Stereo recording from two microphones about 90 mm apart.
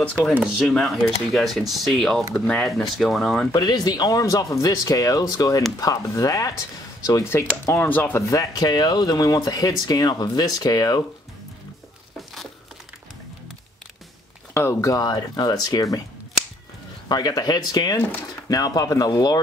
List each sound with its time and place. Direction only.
0.7 s speech: centre (ahead or behind)
2.3 s speech: 15° left (ahead or behind)
2.6 s speech: centre (ahead or behind)
3.5 s speech: 45° left (ahead or behind); by 8.2 s 20° left (ahead or behind)
8.3 s speech: 40° left (ahead or behind)
14.5 s speech: 30° left (ahead or behind)
15.0 s speech: 50° left (ahead or behind)
17.1 s speech: 45° left (ahead or behind)